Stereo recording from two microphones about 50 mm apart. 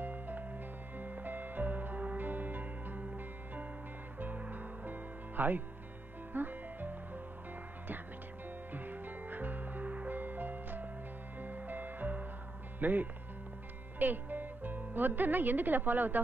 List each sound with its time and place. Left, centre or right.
0.0 s music: right
8.7 s music: right
12.8 s speech: right